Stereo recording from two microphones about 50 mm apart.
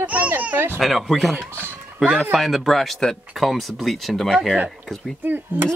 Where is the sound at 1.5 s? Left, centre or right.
Right.